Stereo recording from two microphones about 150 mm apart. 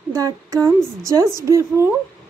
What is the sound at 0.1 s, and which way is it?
A child's voice, 20° right (ahead or behind).